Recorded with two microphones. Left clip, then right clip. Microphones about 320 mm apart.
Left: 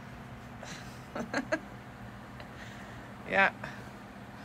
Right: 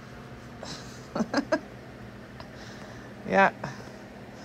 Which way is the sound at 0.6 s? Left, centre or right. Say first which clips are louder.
Right 5 dB; centre.